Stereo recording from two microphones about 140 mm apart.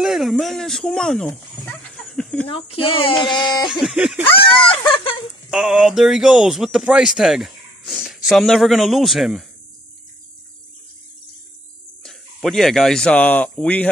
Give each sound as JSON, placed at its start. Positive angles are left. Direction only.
{"t": 0.0, "sound": "speech", "side_deg": 0}
{"t": 2.4, "sound": "speech", "side_deg": 45}
{"t": 3.2, "sound": "speech", "side_deg": 5}
{"t": 3.4, "sound": "speech", "side_deg": 35}
{"t": 3.8, "sound": "speech", "side_deg": -5}
{"t": 4.6, "sound": "speech", "side_deg": 40}
{"t": 5.5, "sound": "speech", "side_deg": -5}
{"t": 12.0, "sound": "speech", "side_deg": 0}